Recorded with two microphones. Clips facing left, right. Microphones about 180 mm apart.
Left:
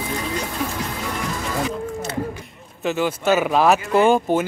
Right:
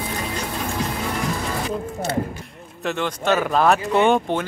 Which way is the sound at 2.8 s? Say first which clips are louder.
Left 3 dB; 5° left (ahead or behind).